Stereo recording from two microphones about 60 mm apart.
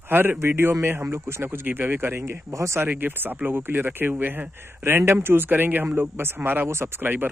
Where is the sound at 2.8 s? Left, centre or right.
Right.